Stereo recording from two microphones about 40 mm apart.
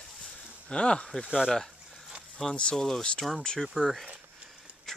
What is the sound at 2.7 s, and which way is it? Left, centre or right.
Speech, centre.